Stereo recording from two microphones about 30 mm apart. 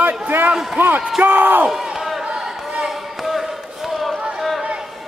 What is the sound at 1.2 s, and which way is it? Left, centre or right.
Speech, right.